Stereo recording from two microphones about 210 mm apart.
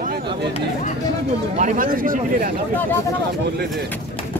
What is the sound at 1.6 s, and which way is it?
Speech, 40° right (ahead or behind).